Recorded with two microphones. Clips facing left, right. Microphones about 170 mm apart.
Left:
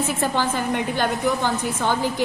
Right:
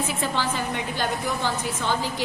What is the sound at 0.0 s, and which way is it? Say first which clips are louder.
A woman's voice: left 4 dB; 50° left (ahead or behind).